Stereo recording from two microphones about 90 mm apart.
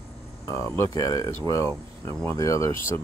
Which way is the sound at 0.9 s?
40° left (ahead or behind).